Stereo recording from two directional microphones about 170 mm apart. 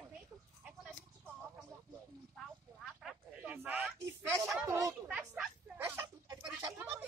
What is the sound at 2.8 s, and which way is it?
Speech, 5° right (ahead or behind).